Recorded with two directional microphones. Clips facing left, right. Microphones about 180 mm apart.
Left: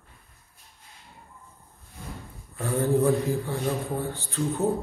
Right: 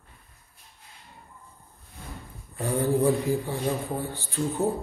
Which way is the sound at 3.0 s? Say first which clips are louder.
Even; 15° right (ahead or behind).